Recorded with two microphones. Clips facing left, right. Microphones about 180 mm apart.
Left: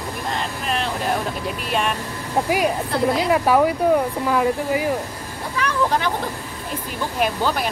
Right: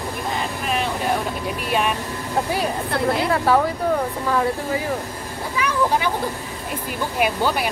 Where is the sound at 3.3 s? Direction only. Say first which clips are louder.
Left 3 dB; 15° left (ahead or behind).